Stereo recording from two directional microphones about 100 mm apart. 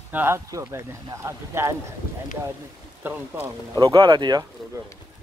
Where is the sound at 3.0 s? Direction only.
20° right (ahead or behind).